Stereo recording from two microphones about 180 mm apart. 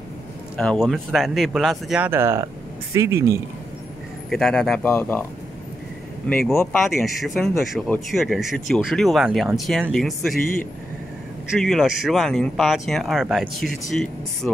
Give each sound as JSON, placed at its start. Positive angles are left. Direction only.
{"t": 0.6, "sound": "speech", "side_deg": 5}
{"t": 4.3, "sound": "speech", "side_deg": 0}
{"t": 4.8, "sound": "speech", "side_deg": 15}
{"t": 6.8, "sound": "speech", "side_deg": 0}
{"t": 10.3, "sound": "a man's voice", "side_deg": 50}
{"t": 11.6, "sound": "speech", "side_deg": 0}